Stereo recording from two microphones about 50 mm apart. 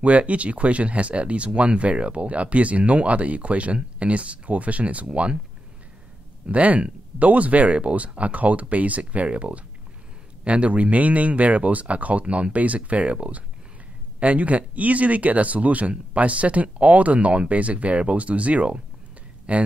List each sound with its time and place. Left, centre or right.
0.0 s speech: right
6.4 s speech: right